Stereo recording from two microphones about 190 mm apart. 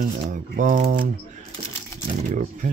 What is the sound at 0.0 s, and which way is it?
Speech, 45° right (ahead or behind).